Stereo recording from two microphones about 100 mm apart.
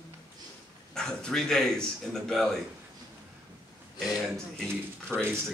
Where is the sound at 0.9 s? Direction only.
5° left (ahead or behind).